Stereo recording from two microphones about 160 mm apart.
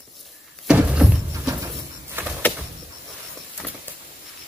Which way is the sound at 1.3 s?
20° right (ahead or behind).